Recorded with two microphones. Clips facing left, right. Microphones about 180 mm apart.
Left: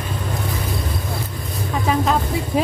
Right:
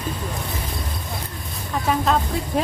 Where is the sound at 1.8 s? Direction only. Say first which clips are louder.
Left 1 dB; 5° left (ahead or behind).